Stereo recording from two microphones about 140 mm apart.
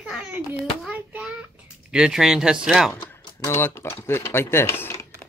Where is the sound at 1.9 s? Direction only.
5° right (ahead or behind).